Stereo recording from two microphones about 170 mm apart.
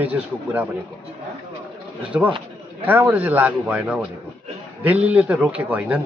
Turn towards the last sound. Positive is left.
turn(degrees=-10)  # may be behind; listen again after turning